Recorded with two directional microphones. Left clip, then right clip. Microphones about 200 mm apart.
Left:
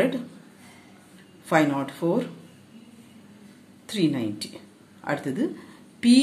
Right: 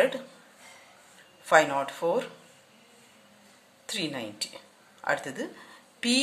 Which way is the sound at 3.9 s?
15° right (ahead or behind).